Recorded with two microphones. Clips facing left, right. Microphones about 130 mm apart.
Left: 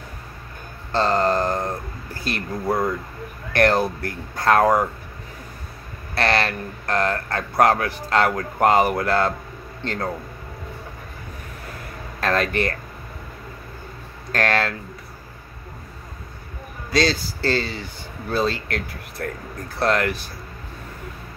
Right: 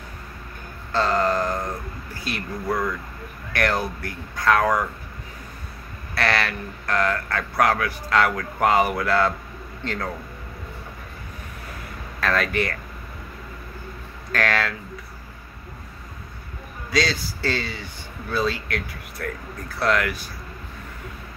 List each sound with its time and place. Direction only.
0.9 s speech: 25° left (ahead or behind)
6.1 s speech: 25° left (ahead or behind)
9.8 s speech: 25° left (ahead or behind)
12.2 s speech: 25° left (ahead or behind)
14.3 s speech: 25° left (ahead or behind)
16.9 s speech: 30° left (ahead or behind)